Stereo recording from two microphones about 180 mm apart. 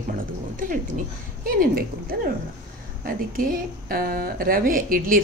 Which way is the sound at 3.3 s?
55° right (ahead or behind).